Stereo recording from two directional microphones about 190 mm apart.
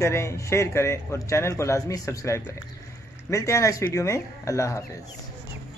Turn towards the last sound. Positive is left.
turn(degrees=15)  # may be behind; listen again after turning